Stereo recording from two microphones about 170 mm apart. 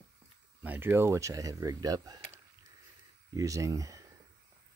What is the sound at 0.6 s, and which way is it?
Speech, 10° right (ahead or behind).